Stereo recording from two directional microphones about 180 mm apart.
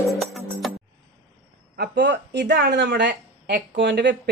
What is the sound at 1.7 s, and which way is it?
Speech, 65° right (ahead or behind).